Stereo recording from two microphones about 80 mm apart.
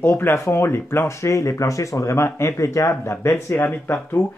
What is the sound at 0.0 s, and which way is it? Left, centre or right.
Speech, left.